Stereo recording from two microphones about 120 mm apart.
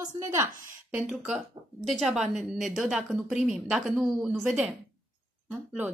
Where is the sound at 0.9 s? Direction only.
5° right (ahead or behind).